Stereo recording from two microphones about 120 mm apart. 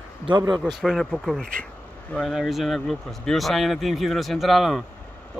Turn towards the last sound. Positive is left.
turn(degrees=0)  # may be behind; listen again after turning